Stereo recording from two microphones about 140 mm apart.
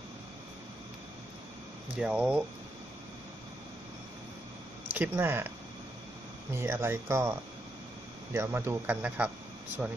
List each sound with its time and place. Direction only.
2.0 s speech: 10° right (ahead or behind)
4.9 s speech: 15° right (ahead or behind)
6.5 s speech: 15° right (ahead or behind)